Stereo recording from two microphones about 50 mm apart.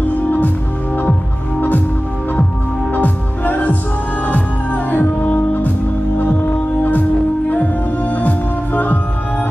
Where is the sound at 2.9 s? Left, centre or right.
Left.